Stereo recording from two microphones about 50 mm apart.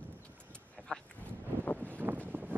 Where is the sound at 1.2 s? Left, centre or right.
Left.